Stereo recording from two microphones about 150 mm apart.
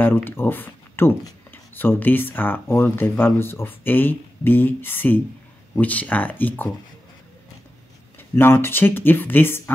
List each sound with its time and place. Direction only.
0.0 s speech: 15° left (ahead or behind)
8.2 s speech: 15° left (ahead or behind)